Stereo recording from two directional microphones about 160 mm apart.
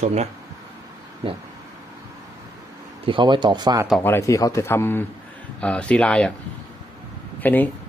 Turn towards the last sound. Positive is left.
turn(degrees=10)  # may be behind; listen again after turning